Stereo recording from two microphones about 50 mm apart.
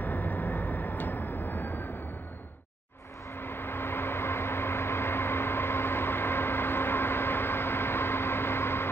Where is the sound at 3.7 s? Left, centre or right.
Left.